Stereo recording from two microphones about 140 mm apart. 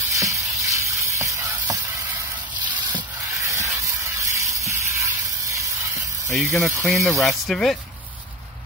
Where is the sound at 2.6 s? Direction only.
35° right (ahead or behind).